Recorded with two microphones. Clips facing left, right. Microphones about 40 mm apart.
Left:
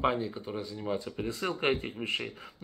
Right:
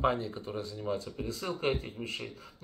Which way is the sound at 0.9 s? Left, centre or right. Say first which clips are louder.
Left 3 dB; left.